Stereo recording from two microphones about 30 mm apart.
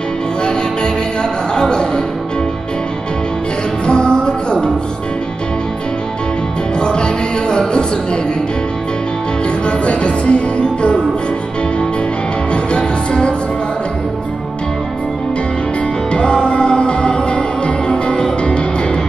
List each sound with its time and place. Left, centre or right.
1.5 s a man's voice: left
3.8 s music: left
6.8 s music: left
9.7 s music: left
12.7 s music: left
16.1 s music: left